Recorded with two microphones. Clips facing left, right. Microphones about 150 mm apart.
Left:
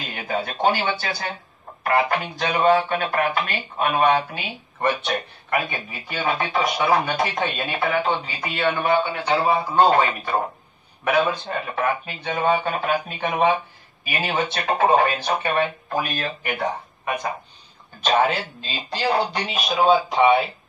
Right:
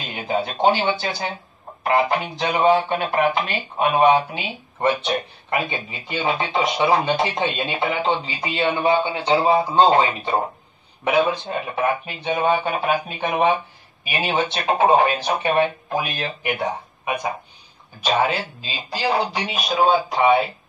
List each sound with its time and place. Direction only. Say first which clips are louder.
0.1 s speech: right 4 dB; 25° right (ahead or behind)
11.4 s speech: right 2 dB; 15° right (ahead or behind)
18.0 s speech: left 1 dB; 5° right (ahead or behind)